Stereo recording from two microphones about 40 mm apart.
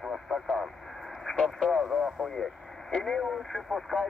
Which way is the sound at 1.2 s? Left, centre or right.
Centre.